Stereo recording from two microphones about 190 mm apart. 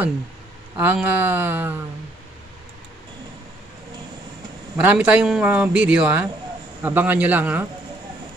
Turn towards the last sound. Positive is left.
turn(degrees=-10)  # may be behind; listen again after turning